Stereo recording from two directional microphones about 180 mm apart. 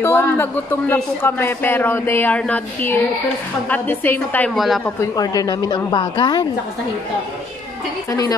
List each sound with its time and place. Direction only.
0.0 s a man's voice: 10° left (ahead or behind)
4.6 s a woman's voice: centre (ahead or behind)
4.8 s a woman's voice: 20° left (ahead or behind)
8.1 s a woman's voice: 20° left (ahead or behind)